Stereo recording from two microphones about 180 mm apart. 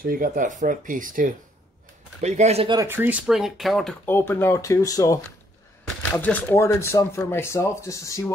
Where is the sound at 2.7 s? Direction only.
15° right (ahead or behind).